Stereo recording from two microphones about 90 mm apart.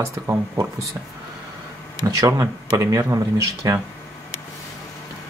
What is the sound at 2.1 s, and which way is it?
Speech, 35° right (ahead or behind).